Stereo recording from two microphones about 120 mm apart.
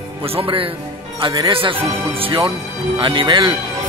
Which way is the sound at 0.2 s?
50° right (ahead or behind).